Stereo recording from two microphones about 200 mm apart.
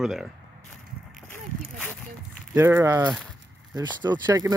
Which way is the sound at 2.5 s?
10° right (ahead or behind).